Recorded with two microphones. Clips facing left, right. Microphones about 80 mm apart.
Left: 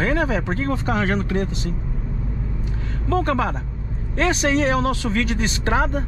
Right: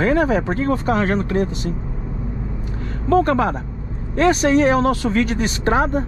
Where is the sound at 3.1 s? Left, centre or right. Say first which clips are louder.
Right 5 dB; right.